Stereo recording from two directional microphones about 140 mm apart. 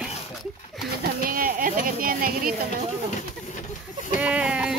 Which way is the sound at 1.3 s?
90° right.